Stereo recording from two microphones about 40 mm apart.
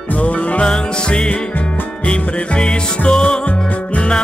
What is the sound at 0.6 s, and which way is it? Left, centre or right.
Music, left.